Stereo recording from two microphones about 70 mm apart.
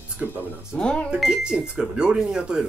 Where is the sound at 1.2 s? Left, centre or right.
Centre.